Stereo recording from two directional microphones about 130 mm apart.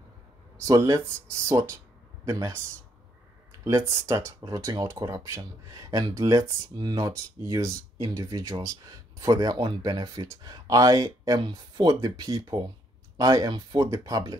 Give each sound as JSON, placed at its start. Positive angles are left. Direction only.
{"t": 0.6, "sound": "speech", "side_deg": -25}
{"t": 3.6, "sound": "speech", "side_deg": -20}